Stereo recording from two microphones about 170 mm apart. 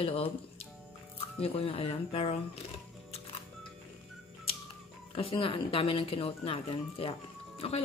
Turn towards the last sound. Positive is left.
turn(degrees=35)  # may be behind; listen again after turning